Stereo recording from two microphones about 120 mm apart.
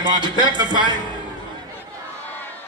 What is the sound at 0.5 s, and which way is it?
Music, 40° right (ahead or behind).